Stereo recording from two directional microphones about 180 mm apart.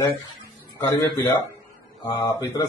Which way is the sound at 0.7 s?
15° left (ahead or behind).